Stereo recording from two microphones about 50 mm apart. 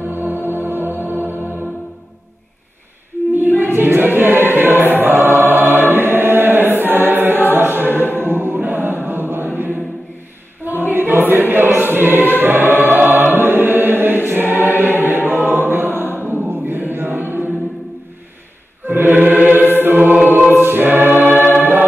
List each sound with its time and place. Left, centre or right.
0.0 s music: right
3.3 s choir: right
8.1 s music: right
10.6 s music: right
16.4 s choir: right
18.9 s music: right
20.2 s choir: right
21.5 s music: right